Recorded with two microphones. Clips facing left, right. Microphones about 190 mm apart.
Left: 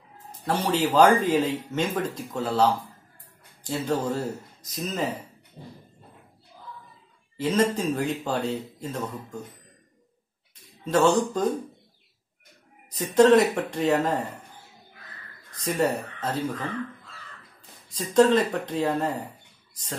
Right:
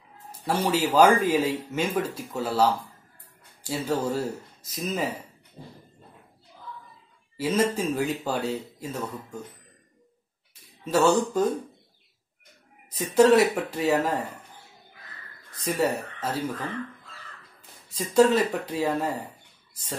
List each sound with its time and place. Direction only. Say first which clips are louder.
0.3 s speech: even; 10° right (ahead or behind)
7.3 s speech: left 1 dB; 10° right (ahead or behind)
10.9 s speech: even; 10° right (ahead or behind)
12.9 s speech: left 1 dB; 10° right (ahead or behind)
15.6 s speech: left 1 dB; 5° right (ahead or behind)
17.8 s speech: even; 5° right (ahead or behind)